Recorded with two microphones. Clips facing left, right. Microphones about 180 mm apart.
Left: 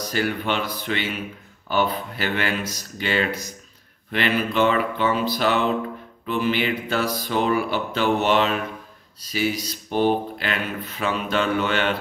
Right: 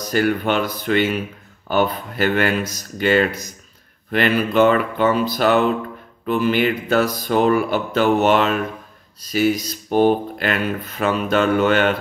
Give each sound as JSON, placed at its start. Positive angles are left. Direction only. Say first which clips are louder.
{"t": 0.1, "sound": "speech", "louder": "right 7 dB", "side_deg": -50}